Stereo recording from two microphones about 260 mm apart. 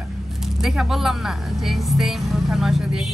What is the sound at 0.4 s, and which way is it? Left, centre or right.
Speech, centre.